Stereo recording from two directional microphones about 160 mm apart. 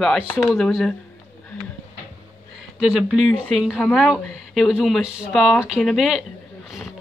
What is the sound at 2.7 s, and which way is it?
Speech, 5° right (ahead or behind).